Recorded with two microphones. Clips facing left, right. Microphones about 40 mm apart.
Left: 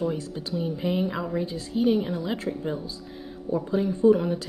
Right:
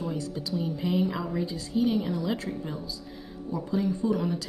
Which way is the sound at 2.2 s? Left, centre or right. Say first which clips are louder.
Left 2 dB; left.